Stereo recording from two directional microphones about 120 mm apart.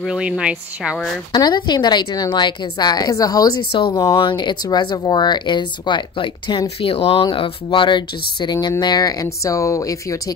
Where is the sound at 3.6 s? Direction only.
45° left (ahead or behind).